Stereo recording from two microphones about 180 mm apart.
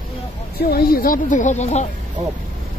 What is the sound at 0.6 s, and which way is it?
Speech, 60° left (ahead or behind).